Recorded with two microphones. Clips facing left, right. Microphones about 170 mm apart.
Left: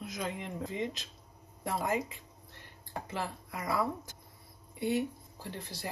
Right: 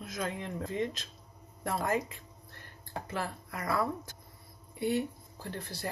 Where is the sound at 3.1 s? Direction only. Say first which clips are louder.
Right 1 dB; 20° left (ahead or behind).